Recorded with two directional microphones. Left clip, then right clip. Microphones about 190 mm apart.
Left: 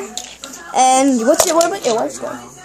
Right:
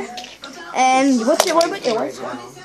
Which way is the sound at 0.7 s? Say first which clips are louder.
Left 3 dB; 25° left (ahead or behind).